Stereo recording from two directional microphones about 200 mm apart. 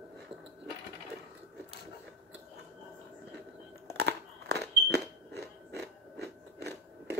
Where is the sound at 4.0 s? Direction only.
60° right (ahead or behind).